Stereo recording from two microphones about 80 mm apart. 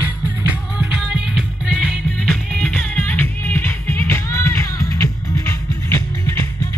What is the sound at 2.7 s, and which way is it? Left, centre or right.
Music, centre.